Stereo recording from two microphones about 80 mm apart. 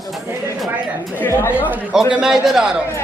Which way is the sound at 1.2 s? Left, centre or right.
Left.